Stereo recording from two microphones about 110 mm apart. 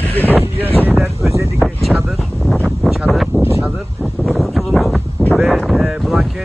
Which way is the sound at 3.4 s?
20° right (ahead or behind).